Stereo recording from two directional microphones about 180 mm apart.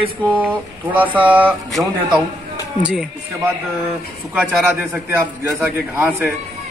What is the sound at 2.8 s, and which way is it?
Speech, 5° right (ahead or behind).